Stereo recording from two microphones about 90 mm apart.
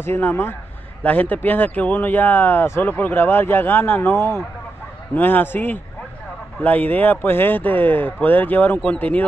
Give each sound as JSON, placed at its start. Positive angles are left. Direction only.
{"t": 0.0, "sound": "speech", "side_deg": 25}